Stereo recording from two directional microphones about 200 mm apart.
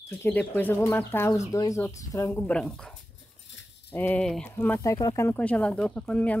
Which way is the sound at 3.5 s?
65° left (ahead or behind).